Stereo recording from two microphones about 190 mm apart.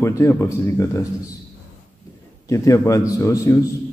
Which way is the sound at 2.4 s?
15° left (ahead or behind).